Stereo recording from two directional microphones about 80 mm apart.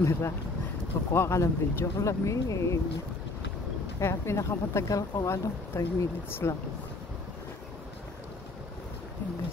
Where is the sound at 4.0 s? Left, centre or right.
Left.